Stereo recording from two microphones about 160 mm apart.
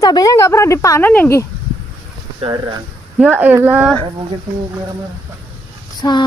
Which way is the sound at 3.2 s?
10° right (ahead or behind).